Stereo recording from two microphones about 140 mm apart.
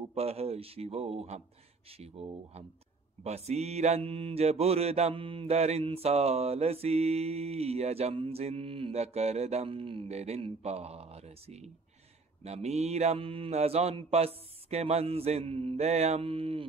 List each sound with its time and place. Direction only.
0.1 s mantra: 45° right (ahead or behind)